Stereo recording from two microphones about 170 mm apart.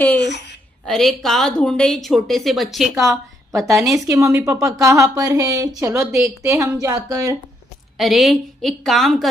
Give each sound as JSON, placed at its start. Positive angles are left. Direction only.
{"t": 0.2, "sound": "a sound", "side_deg": 85}
{"t": 0.8, "sound": "a woman's voice", "side_deg": 0}
{"t": 3.0, "sound": "a woman's voice", "side_deg": -20}
{"t": 8.0, "sound": "a woman's voice", "side_deg": 0}